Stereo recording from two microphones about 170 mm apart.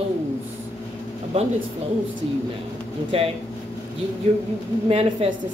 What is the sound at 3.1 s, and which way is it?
Speech, 35° right (ahead or behind).